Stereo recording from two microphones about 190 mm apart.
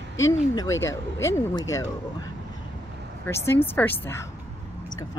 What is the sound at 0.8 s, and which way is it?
Speech, 15° left (ahead or behind).